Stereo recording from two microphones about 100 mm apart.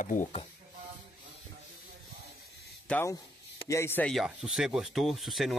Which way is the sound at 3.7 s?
25° left (ahead or behind).